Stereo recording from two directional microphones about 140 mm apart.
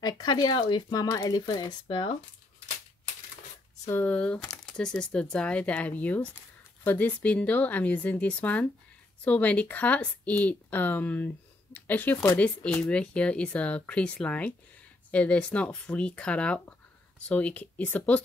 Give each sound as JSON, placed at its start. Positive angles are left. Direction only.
{"t": 0.0, "sound": "speech", "side_deg": 30}
{"t": 3.8, "sound": "speech", "side_deg": 15}